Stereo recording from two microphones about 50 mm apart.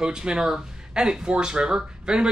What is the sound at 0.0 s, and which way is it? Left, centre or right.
Speech, centre.